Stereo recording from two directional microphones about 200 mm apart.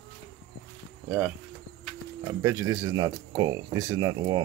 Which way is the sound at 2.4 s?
15° right (ahead or behind).